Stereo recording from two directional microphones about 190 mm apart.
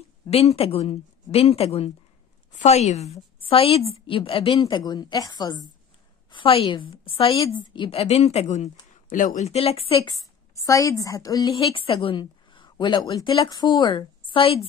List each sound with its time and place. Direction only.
0.3 s a woman's voice: 30° left (ahead or behind)
10.5 s a woman's voice: 15° left (ahead or behind)